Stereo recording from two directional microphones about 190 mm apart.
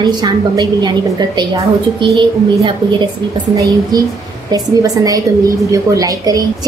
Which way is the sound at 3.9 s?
20° right (ahead or behind).